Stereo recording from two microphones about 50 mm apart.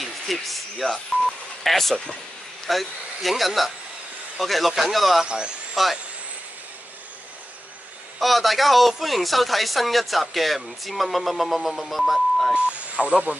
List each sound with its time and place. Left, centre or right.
0.0 s speech: centre
5.2 s speech: centre
5.8 s speech: centre
8.2 s speech: centre
12.5 s speech: right